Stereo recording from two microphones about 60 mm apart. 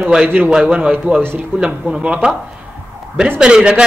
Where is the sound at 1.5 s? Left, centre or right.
Right.